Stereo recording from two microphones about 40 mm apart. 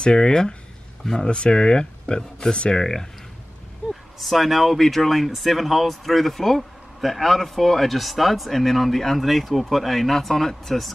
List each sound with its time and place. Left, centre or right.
0.0 s speech: centre
3.9 s speech: centre